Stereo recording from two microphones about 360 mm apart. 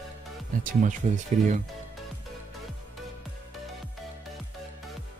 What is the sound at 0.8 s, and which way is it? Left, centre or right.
Speech, centre.